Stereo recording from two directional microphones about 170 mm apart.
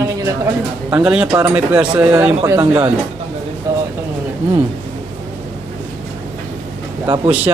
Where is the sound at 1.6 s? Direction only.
10° right (ahead or behind).